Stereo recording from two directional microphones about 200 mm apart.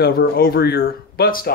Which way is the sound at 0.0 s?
50° left (ahead or behind).